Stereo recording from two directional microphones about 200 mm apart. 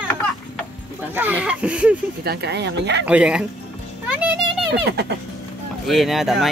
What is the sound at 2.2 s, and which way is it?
Speech, 55° right (ahead or behind).